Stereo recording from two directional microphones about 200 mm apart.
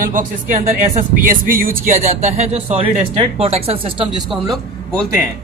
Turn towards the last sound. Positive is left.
turn(degrees=0)  # may be behind; listen again after turning